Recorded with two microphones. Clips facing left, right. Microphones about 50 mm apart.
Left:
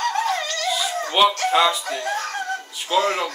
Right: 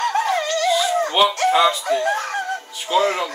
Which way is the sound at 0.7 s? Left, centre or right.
Centre.